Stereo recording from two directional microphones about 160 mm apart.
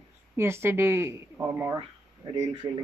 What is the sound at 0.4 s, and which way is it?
Speech, 15° right (ahead or behind).